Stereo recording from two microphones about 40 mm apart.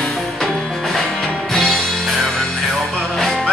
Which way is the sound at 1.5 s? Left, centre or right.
Centre.